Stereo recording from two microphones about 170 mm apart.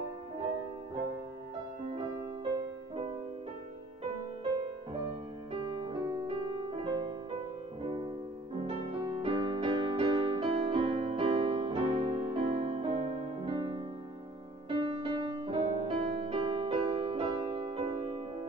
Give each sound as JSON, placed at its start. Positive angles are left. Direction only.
{"t": 1.9, "sound": "music", "side_deg": -35}
{"t": 5.5, "sound": "music", "side_deg": -30}
{"t": 8.6, "sound": "music", "side_deg": -30}